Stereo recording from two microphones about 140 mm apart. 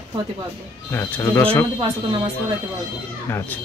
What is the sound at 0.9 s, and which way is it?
Speech, 20° left (ahead or behind).